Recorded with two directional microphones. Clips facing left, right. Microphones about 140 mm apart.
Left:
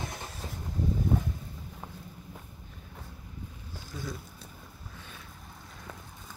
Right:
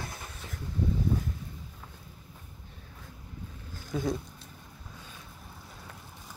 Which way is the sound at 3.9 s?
75° right (ahead or behind).